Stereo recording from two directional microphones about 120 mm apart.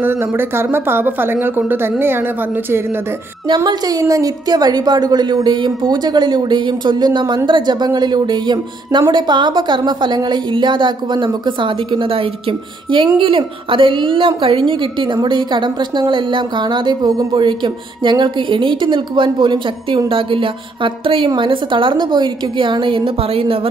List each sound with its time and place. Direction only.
0.0 s a woman's voice: 20° right (ahead or behind)
3.4 s a woman's voice: 35° right (ahead or behind); by 23.7 s 55° right (ahead or behind)